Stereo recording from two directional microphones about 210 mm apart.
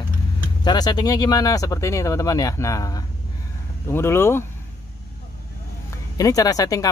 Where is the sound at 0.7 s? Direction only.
20° left (ahead or behind).